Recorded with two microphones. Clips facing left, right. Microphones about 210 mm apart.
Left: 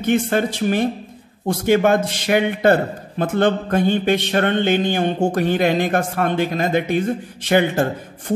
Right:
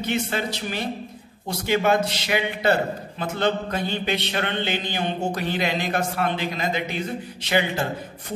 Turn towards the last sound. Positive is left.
turn(degrees=50)  # may be behind; listen again after turning